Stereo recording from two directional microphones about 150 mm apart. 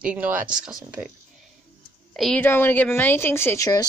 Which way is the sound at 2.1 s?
Centre (ahead or behind).